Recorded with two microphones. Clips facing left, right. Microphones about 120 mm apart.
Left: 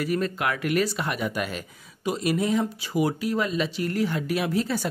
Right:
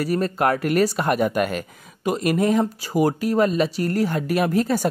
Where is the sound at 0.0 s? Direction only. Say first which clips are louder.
Right 5 dB; 40° right (ahead or behind).